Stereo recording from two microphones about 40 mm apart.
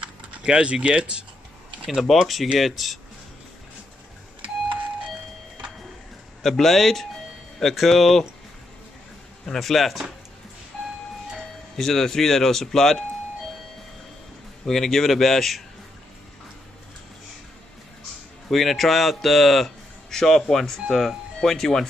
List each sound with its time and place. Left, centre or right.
0.0 s speech: right
2.0 s speech: centre
6.4 s speech: centre
9.5 s speech: centre
11.7 s speech: centre
14.7 s speech: centre
18.5 s speech: centre